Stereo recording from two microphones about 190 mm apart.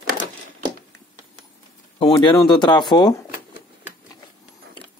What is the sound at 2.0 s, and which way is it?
Speech, 20° left (ahead or behind).